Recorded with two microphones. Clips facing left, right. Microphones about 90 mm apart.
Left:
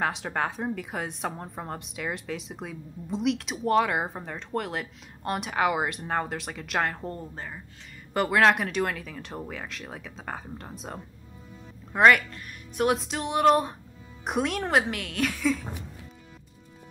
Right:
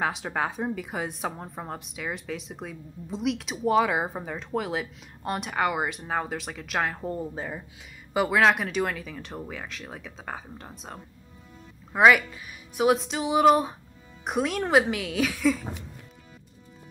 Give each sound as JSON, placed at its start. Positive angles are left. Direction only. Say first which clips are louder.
{"t": 0.0, "sound": "a woman's voice", "louder": "even", "side_deg": 0}